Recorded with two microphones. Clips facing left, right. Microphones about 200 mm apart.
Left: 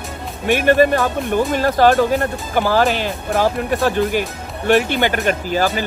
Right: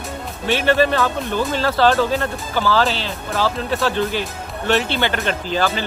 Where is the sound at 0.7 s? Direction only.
50° left (ahead or behind).